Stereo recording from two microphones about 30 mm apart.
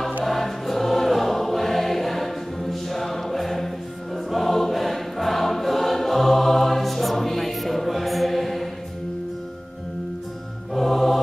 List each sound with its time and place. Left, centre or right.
0.2 s choir: centre
10.7 s music: centre